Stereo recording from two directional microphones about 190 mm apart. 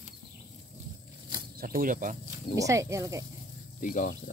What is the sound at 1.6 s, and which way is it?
Speech, 50° right (ahead or behind).